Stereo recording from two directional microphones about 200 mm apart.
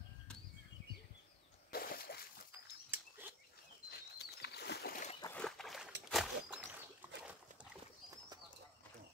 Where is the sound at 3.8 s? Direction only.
55° left (ahead or behind).